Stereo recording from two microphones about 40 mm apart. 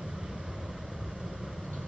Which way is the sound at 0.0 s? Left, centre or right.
Centre.